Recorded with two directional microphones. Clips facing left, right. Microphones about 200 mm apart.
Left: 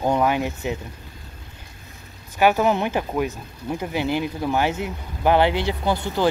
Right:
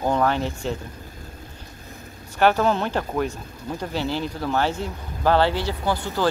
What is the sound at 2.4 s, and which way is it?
Speech, 10° left (ahead or behind).